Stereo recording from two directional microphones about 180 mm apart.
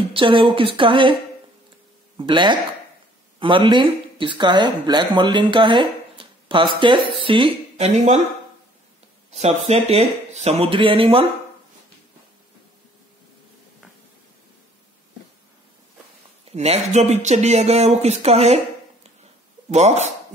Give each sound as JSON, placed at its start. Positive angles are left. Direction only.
{"t": 0.1, "sound": "a woman's voice", "side_deg": -30}
{"t": 2.1, "sound": "a woman's voice", "side_deg": -25}
{"t": 9.3, "sound": "speech", "side_deg": -35}
{"t": 16.5, "sound": "speech", "side_deg": -35}
{"t": 19.7, "sound": "speech", "side_deg": -40}